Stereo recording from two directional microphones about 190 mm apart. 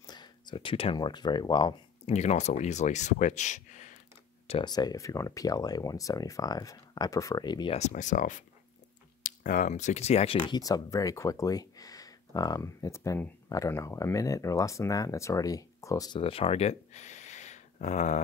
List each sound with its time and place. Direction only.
0.0 s speech: 20° left (ahead or behind)
2.1 s speech: 35° left (ahead or behind)
4.5 s speech: 25° left (ahead or behind)
7.7 s speech: 40° left (ahead or behind)
10.4 s speech: 20° left (ahead or behind)
16.2 s speech: 30° left (ahead or behind)